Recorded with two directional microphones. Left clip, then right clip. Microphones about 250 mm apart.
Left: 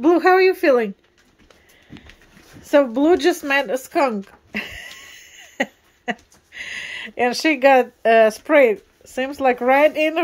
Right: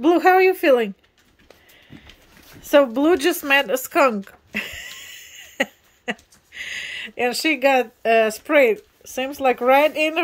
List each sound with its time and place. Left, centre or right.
0.0 s speech: centre
2.7 s speech: centre